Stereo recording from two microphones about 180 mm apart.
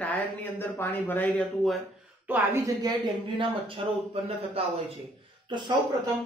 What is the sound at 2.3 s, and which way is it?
Speech, 15° right (ahead or behind).